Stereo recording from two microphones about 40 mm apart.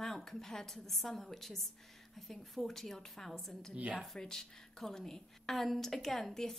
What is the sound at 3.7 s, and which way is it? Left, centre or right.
Speech, right.